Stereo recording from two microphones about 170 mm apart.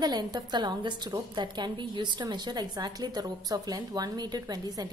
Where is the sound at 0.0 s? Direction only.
25° right (ahead or behind).